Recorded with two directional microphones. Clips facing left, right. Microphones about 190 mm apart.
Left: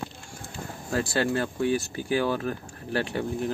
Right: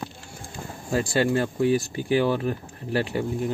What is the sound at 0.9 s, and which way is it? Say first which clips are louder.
Speech: right 3 dB; 15° right (ahead or behind).